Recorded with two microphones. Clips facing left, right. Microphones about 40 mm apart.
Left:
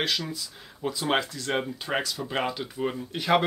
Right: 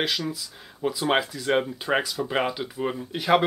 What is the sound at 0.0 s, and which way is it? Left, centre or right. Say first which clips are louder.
Speech: right 2 dB; centre.